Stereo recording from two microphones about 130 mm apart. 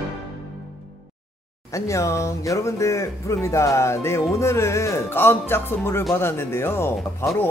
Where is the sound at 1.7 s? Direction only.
25° left (ahead or behind).